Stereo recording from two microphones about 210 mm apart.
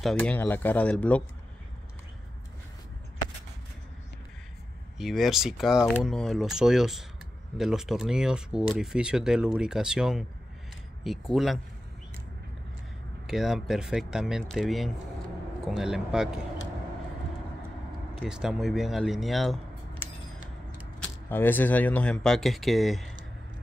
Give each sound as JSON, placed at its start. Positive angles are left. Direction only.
{"t": 0.0, "sound": "speech", "side_deg": 5}
{"t": 4.9, "sound": "speech", "side_deg": 0}
{"t": 13.3, "sound": "speech", "side_deg": 0}
{"t": 18.2, "sound": "speech", "side_deg": -5}